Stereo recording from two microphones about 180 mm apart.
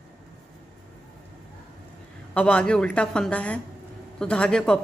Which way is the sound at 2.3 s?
5° left (ahead or behind).